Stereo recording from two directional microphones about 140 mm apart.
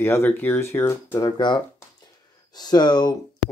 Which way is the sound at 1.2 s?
30° left (ahead or behind).